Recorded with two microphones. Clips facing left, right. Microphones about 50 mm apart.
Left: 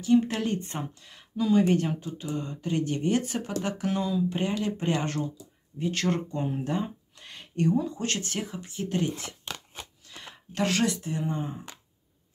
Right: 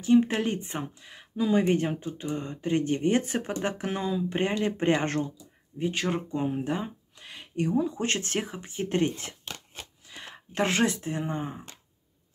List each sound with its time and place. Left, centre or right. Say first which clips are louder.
0.0 s speech: right 1 dB; right
5.8 s speech: left 1 dB; centre; by 9.1 s right
10.0 s speech: right 1 dB; right